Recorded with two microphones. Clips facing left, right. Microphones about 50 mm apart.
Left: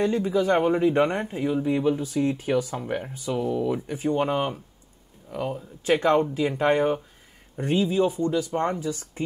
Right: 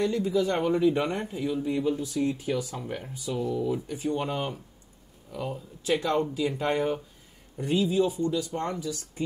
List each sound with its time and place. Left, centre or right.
0.0 s speech: left